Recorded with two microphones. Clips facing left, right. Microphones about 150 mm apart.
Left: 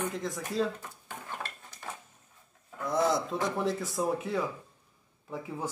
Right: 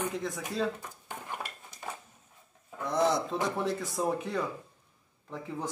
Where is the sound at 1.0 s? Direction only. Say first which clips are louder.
Right 1 dB; 15° right (ahead or behind).